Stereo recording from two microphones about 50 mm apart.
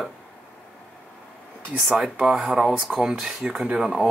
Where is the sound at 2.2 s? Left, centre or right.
Centre.